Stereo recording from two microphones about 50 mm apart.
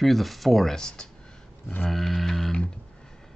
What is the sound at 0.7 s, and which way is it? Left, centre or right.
Speech, centre.